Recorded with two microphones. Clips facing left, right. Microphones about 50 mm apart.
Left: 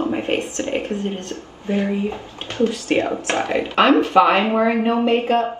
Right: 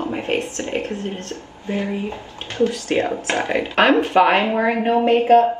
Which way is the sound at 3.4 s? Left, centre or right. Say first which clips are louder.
Even; right.